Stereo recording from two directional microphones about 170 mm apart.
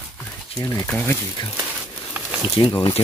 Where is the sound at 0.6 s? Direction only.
20° left (ahead or behind).